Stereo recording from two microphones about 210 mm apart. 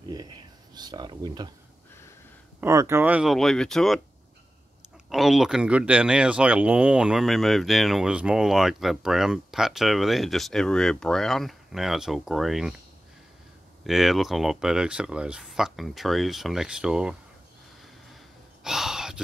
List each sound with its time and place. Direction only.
0.7 s speech: 20° right (ahead or behind)
2.6 s speech: 15° right (ahead or behind)
5.1 s speech: centre (ahead or behind)
13.8 s speech: centre (ahead or behind)
18.1 s gasp: centre (ahead or behind)